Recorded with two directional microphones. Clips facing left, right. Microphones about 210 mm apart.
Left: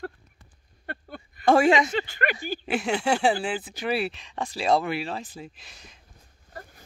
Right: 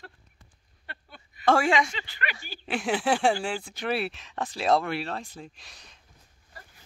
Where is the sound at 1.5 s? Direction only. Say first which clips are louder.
Left 4 dB; 20° left (ahead or behind).